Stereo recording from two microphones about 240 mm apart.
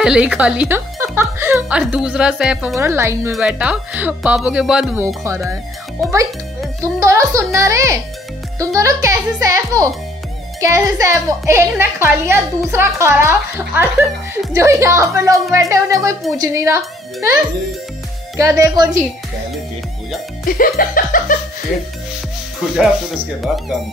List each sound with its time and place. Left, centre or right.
0.0 s a woman's voice: centre
6.8 s a woman's voice: centre
20.4 s laughter: left